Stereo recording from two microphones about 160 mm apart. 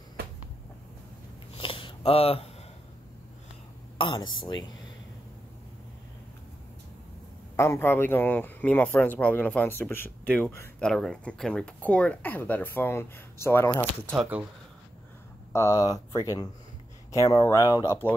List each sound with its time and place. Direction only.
1.5 s a sound: 35° left (ahead or behind)
4.0 s speech: 30° left (ahead or behind)
7.5 s speech: 15° left (ahead or behind)
15.5 s speech: 20° left (ahead or behind)